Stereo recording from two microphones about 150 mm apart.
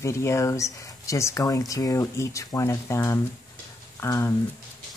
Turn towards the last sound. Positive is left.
turn(degrees=20)  # may be behind; listen again after turning